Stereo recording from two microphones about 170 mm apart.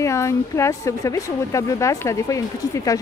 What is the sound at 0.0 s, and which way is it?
Speech, 15° left (ahead or behind).